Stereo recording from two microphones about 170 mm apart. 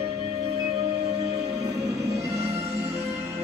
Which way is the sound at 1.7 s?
20° right (ahead or behind).